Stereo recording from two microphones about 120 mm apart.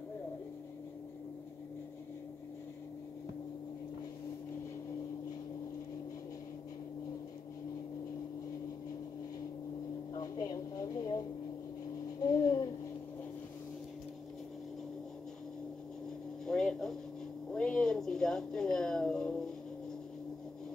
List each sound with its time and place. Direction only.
10.1 s a woman's voice: 30° left (ahead or behind)
12.2 s babbling: 30° left (ahead or behind)
16.4 s a sound: 5° left (ahead or behind)